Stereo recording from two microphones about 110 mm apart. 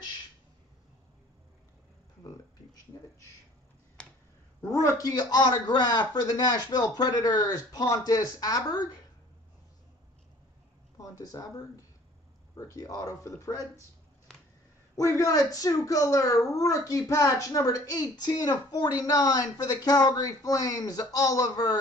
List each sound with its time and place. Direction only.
4.8 s a man's voice: 30° left (ahead or behind)
11.0 s a man's voice: 30° left (ahead or behind)
15.0 s a man's voice: 30° left (ahead or behind)